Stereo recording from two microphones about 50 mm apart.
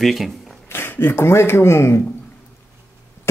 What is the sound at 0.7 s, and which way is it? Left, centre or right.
Speech, left.